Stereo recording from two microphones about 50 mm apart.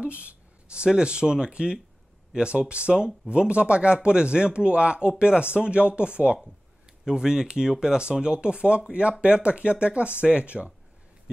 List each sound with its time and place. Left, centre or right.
0.0 s a man's voice: right